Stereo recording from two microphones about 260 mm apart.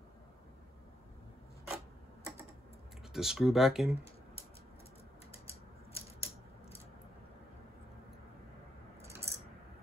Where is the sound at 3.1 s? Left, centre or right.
Centre.